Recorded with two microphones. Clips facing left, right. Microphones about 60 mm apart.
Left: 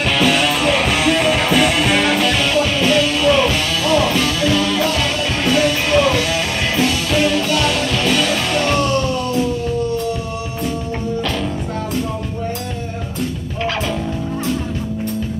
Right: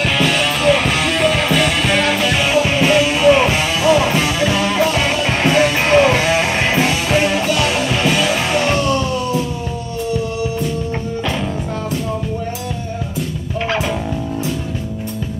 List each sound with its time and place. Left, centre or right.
0.0 s music: centre